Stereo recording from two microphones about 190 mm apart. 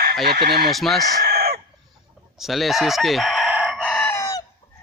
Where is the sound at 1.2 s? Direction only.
55° right (ahead or behind).